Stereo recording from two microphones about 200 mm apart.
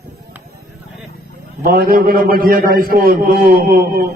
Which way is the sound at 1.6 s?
45° right (ahead or behind).